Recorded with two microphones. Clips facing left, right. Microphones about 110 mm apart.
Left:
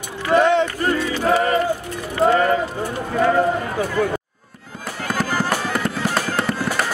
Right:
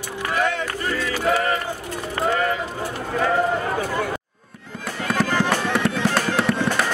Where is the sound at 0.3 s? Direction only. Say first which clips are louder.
Left 8 dB; 25° left (ahead or behind).